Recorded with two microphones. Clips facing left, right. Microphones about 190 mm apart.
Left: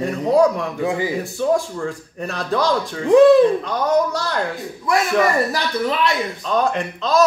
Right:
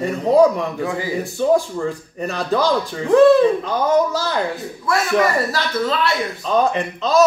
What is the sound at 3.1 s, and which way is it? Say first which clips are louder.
Speech: left 1 dB; 15° left (ahead or behind).